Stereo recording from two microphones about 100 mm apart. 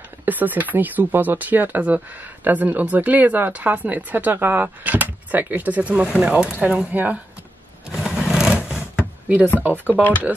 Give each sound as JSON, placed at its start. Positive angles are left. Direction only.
{"t": 0.2, "sound": "speech", "side_deg": -20}
{"t": 7.9, "sound": "sewing machine", "side_deg": -5}
{"t": 9.6, "sound": "speech", "side_deg": -15}